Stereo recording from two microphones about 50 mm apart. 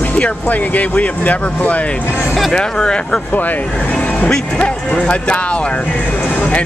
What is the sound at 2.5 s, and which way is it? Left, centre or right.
Speech, centre.